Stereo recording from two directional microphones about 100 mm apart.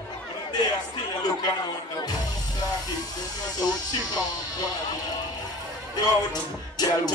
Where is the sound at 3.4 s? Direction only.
40° left (ahead or behind).